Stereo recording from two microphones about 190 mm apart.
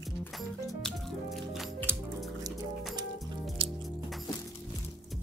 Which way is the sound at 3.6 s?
30° right (ahead or behind).